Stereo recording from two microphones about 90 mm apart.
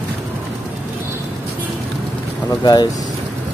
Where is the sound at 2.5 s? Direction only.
50° left (ahead or behind).